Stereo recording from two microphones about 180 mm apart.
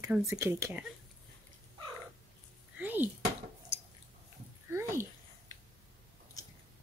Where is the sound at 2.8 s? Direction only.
10° right (ahead or behind).